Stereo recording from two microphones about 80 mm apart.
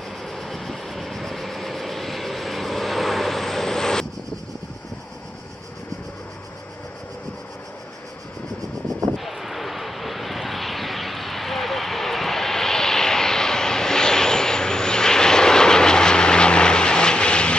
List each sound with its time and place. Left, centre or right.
0.2 s vehicle: centre
9.1 s vehicle: centre